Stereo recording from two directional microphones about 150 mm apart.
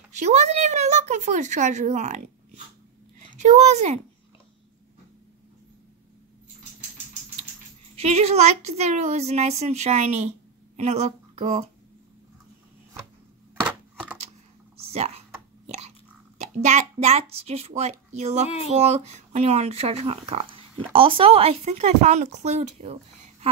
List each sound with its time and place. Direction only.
0.2 s speech: 50° right (ahead or behind)
7.9 s speech: 45° right (ahead or behind)
14.9 s computer keyboard: 45° right (ahead or behind)
16.3 s a child's voice: 50° right (ahead or behind)